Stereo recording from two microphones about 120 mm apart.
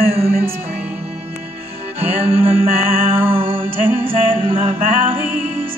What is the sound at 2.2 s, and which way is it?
Music, 55° right (ahead or behind).